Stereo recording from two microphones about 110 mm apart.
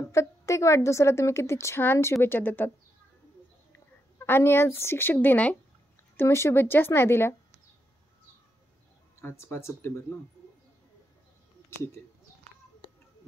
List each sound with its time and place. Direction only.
0.1 s a woman's voice: 30° left (ahead or behind)
3.7 s a woman's voice: 20° left (ahead or behind)
6.1 s a woman's voice: 25° left (ahead or behind)
9.2 s a woman's voice: 25° left (ahead or behind)